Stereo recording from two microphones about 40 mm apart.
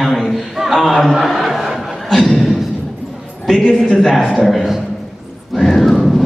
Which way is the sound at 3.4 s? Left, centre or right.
Centre.